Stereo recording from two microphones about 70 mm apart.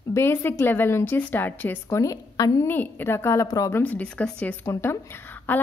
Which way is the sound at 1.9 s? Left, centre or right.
Left.